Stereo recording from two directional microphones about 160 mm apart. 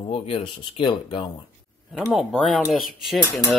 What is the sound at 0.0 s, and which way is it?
Speech, 35° left (ahead or behind).